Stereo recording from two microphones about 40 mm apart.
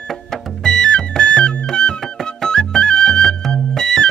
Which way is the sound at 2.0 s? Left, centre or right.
Centre.